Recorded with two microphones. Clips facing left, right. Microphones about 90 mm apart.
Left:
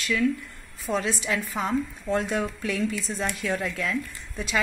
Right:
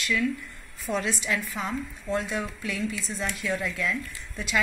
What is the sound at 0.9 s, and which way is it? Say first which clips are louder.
Speech: left 2 dB; 5° left (ahead or behind).